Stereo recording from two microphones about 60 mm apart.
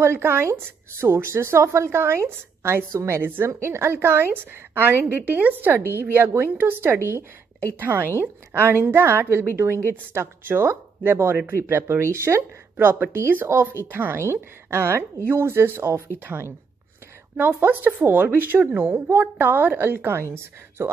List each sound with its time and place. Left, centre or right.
0.0 s speech: right
3.2 s a woman's voice: right
12.7 s a woman's voice: right